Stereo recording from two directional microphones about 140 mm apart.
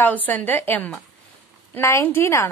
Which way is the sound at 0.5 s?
15° left (ahead or behind).